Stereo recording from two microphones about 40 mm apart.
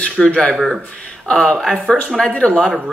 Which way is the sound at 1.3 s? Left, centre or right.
Centre.